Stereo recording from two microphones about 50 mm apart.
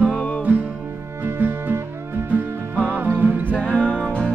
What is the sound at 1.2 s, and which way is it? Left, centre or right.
Music, right.